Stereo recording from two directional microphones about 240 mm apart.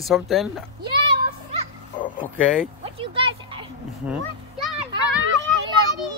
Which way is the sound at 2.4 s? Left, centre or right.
Centre.